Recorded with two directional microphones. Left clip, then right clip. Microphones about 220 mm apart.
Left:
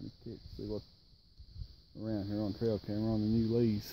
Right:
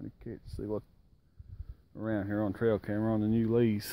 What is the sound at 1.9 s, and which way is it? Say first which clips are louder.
Speech: right 5 dB; 15° right (ahead or behind).